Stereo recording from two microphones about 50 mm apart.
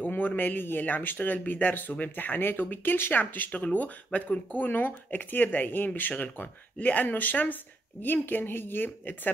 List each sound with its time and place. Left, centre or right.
0.0 s a woman's voice: left